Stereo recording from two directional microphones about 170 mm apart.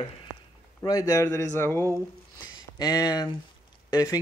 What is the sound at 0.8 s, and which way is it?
A man's voice, 20° left (ahead or behind).